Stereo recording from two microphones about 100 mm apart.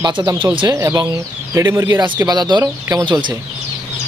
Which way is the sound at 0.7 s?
35° right (ahead or behind).